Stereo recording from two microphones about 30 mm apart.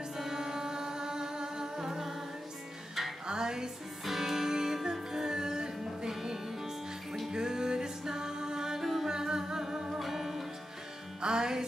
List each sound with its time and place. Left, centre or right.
0.2 s music: centre
3.3 s music: right
4.0 s music: centre
9.1 s humming: right
9.9 s music: centre
11.1 s music: right